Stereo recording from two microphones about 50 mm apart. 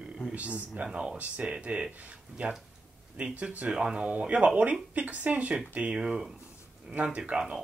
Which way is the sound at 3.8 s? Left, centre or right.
Centre.